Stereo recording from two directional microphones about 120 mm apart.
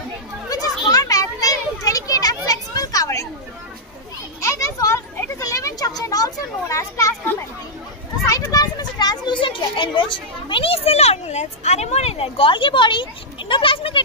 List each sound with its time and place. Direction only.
0.5 s children playing: 30° left (ahead or behind)
4.4 s a sound: 25° left (ahead or behind)
8.3 s children playing: 30° left (ahead or behind); by 14.0 s 45° left (ahead or behind)